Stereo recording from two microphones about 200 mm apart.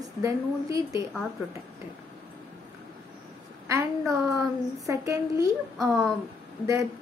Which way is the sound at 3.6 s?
15° right (ahead or behind).